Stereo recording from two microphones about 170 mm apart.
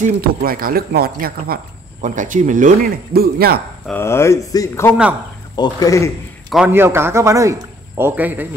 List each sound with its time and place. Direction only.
0.0 s speech: 60° right (ahead or behind)
3.8 s a man's voice: 10° left (ahead or behind)
6.5 s a man's voice: 10° right (ahead or behind)